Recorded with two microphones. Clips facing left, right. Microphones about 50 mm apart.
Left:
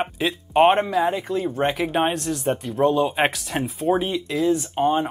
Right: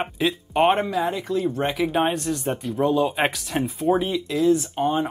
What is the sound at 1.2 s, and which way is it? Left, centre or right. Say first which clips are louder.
Speech: even; centre.